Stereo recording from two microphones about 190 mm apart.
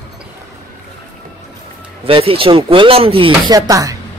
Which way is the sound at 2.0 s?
30° right (ahead or behind).